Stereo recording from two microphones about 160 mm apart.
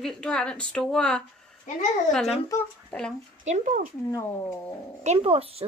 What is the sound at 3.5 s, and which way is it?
Speech, 55° right (ahead or behind).